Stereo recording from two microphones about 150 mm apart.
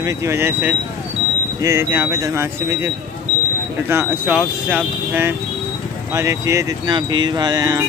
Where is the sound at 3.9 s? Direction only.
15° right (ahead or behind).